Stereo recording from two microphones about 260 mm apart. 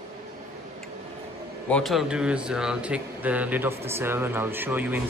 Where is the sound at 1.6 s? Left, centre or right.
Centre.